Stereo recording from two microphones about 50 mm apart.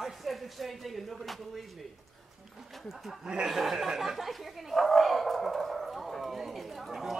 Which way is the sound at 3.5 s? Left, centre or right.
Centre.